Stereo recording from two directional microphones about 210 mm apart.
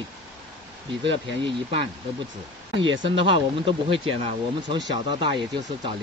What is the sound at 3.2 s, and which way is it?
Speech, 25° right (ahead or behind).